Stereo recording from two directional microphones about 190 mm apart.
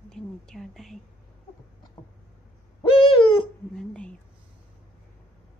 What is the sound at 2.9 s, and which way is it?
Owl, 30° left (ahead or behind).